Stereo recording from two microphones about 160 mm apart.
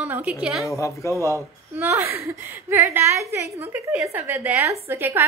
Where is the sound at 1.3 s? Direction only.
15° right (ahead or behind).